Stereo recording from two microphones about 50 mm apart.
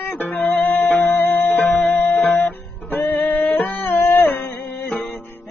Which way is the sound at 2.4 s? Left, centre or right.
Left.